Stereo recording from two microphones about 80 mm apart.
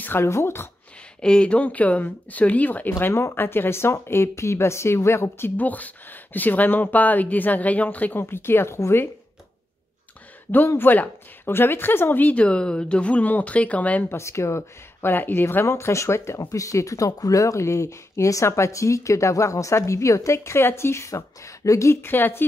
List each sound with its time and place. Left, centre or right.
0.0 s speech: left
1.2 s speech: centre
3.0 s speech: left
10.7 s speech: left
14.0 s speech: left
22.0 s speech: left